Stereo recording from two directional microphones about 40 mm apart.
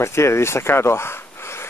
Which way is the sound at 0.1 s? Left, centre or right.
Left.